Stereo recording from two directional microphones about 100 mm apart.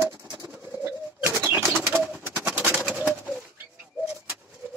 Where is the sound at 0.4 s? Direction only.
25° right (ahead or behind).